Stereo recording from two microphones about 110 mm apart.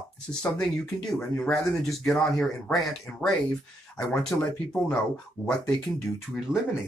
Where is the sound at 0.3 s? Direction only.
10° left (ahead or behind).